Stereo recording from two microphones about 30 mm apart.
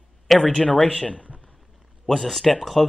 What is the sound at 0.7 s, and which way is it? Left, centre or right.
Speech, left.